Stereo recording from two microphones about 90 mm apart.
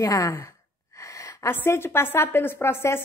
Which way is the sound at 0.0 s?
35° left (ahead or behind).